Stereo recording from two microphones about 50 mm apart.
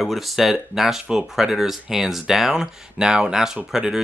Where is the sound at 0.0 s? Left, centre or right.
Centre.